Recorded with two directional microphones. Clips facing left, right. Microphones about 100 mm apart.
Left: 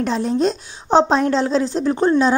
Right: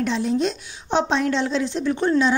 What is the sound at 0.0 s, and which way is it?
A woman's voice, 40° left (ahead or behind).